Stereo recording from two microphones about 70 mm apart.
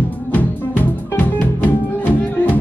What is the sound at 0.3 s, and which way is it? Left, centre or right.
Music, left.